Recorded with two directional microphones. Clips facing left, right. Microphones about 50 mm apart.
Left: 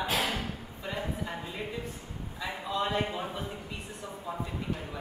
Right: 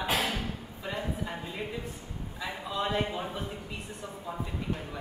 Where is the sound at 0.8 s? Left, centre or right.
Centre.